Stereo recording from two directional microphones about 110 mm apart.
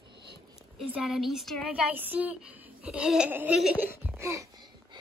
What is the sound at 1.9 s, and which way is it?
A woman's voice, 15° right (ahead or behind).